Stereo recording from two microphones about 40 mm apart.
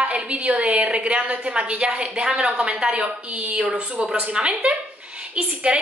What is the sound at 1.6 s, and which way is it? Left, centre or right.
A woman's voice, right.